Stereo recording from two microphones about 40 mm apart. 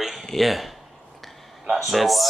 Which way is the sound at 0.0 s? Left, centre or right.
Centre.